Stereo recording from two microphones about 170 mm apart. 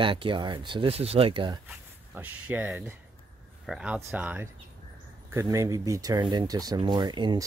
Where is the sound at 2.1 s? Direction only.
10° right (ahead or behind).